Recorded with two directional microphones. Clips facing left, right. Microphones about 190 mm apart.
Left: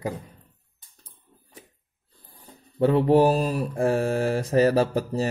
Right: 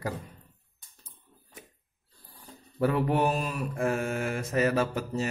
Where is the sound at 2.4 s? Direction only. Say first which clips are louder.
Left 5 dB; 25° left (ahead or behind).